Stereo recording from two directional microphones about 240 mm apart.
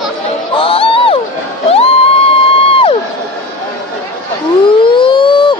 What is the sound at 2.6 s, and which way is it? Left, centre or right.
Crowd, left.